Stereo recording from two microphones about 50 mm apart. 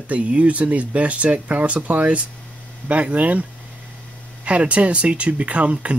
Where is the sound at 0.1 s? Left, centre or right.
Right.